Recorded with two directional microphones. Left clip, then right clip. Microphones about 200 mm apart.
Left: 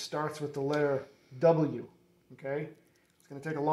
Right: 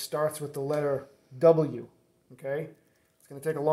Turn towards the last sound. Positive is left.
turn(degrees=-35)  # may be behind; listen again after turning